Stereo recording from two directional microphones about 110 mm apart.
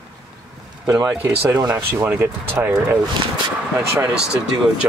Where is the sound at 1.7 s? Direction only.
15° right (ahead or behind).